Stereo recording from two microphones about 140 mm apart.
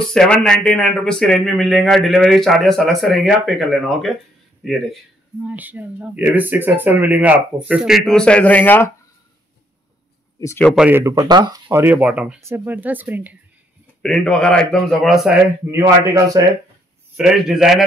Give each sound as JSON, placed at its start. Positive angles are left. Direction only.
{"t": 0.0, "sound": "speech", "side_deg": 5}
{"t": 5.4, "sound": "speech", "side_deg": -10}
{"t": 8.1, "sound": "a man's voice", "side_deg": 5}
{"t": 10.6, "sound": "speech", "side_deg": 0}
{"t": 10.9, "sound": "speech", "side_deg": -20}
{"t": 11.7, "sound": "speech", "side_deg": -15}
{"t": 14.0, "sound": "speech", "side_deg": 5}
{"t": 15.8, "sound": "speech", "side_deg": -25}
{"t": 17.2, "sound": "speech", "side_deg": -5}